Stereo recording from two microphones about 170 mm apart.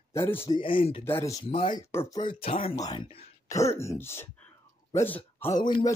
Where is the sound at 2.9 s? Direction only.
20° left (ahead or behind).